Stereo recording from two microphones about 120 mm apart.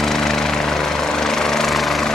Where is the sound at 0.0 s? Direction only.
5° left (ahead or behind).